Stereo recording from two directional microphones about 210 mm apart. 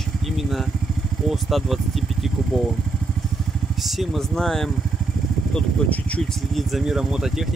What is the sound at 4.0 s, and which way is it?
Speech, centre (ahead or behind).